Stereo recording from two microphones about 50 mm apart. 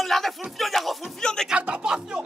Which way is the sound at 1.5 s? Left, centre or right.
Right.